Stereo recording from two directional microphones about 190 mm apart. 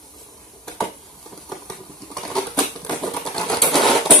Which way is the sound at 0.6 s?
Centre (ahead or behind).